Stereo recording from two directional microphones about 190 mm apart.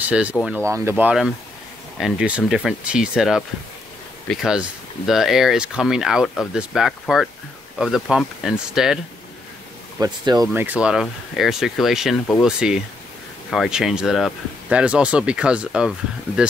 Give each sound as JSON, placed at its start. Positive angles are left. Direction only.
{"t": 0.1, "sound": "speech", "side_deg": -5}
{"t": 9.9, "sound": "speech", "side_deg": -20}
{"t": 10.5, "sound": "speech", "side_deg": -10}
{"t": 16.3, "sound": "speech", "side_deg": 10}